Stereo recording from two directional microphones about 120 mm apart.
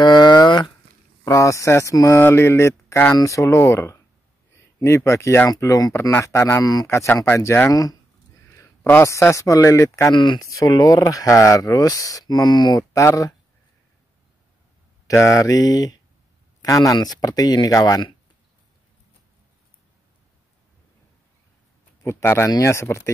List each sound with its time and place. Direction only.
0.0 s a sound: 35° left (ahead or behind)
1.2 s speech: 25° left (ahead or behind)
10.1 s speech: 40° left (ahead or behind)
10.5 s speech: 25° left (ahead or behind)
15.0 s speech: 25° left (ahead or behind)
22.2 s speech: 20° left (ahead or behind)